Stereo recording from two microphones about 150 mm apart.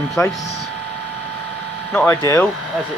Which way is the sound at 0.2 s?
20° left (ahead or behind).